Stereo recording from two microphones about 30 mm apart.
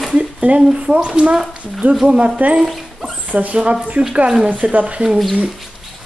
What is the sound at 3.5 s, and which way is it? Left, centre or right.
Speech, right.